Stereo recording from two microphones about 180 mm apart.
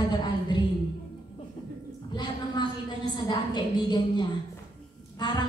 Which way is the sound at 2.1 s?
25° left (ahead or behind).